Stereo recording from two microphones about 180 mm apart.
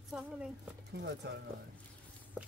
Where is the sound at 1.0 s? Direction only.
70° right (ahead or behind).